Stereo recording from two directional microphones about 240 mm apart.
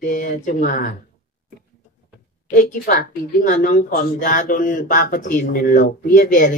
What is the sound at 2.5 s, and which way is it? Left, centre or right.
Speech, left.